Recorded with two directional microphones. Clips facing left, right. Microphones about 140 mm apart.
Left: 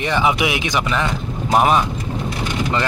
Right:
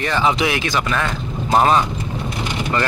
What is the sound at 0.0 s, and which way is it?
Speech, 15° left (ahead or behind).